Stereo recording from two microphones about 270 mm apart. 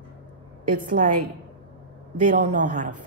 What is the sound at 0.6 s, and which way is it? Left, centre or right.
Speech, right.